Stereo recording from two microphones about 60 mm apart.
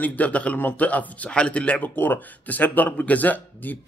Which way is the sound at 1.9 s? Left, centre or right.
Left.